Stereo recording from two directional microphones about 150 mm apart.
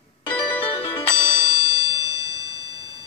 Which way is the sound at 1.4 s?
25° left (ahead or behind).